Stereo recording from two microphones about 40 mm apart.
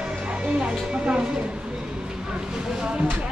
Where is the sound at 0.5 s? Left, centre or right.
Right.